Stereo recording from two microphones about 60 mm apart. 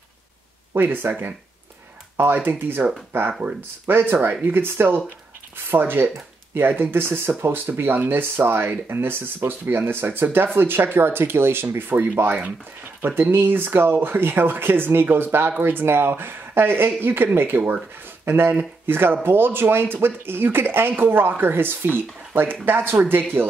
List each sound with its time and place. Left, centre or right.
0.7 s speech: right